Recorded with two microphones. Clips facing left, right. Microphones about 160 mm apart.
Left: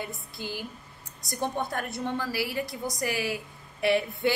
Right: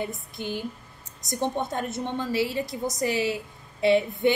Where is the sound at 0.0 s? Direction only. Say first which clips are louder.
Right 5 dB; 20° right (ahead or behind).